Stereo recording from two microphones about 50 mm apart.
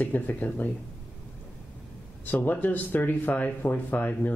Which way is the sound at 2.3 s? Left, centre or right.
Left.